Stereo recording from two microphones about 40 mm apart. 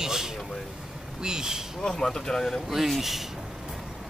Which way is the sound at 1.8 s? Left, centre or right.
Centre.